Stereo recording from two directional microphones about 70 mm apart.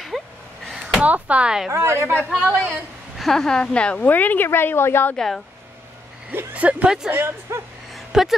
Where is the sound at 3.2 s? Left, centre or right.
Centre; by 5.1 s left.